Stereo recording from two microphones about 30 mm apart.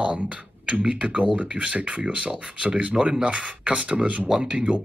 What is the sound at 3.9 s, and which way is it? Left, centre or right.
Speech, right.